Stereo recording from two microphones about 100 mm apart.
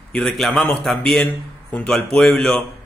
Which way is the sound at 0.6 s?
15° left (ahead or behind).